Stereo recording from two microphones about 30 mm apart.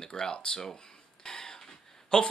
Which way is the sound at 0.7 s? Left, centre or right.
Left.